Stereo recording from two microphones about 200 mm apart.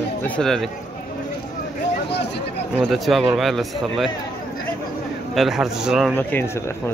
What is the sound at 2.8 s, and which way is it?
A man's voice, centre (ahead or behind).